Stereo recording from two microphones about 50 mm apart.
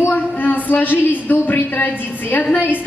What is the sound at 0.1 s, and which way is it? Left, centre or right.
A man's voice, left.